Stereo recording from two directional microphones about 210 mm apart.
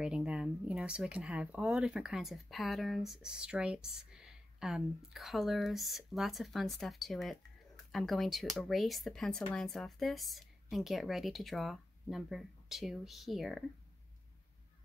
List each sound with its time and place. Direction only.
0.0 s speech: 5° right (ahead or behind)